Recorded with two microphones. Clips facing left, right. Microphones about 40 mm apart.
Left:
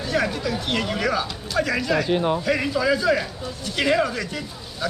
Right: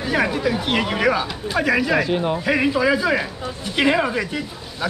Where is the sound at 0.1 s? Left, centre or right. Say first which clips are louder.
Right 4 dB; centre.